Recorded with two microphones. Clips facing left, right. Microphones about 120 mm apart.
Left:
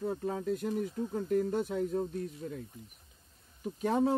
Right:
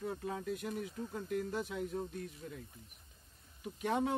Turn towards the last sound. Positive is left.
turn(degrees=35)  # may be behind; listen again after turning